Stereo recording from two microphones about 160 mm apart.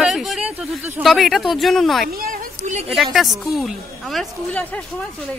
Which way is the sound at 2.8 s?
Centre (ahead or behind).